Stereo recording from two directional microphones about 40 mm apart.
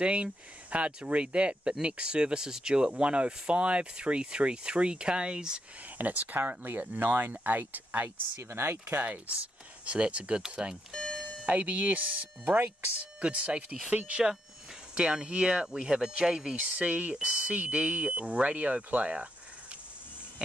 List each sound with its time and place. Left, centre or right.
0.0 s speech: right
5.9 s speech: right
9.8 s speech: right
10.9 s doorbell: centre
11.4 s speech: right
13.2 s speech: right
15.0 s speech: right
15.7 s speech: centre; by 19.1 s right